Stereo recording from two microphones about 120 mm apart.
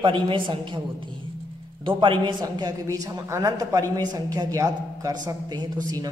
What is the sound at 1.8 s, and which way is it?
Speech, 45° right (ahead or behind).